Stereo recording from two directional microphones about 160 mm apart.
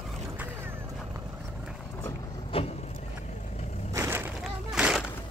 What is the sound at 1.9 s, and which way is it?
Boat, 20° left (ahead or behind).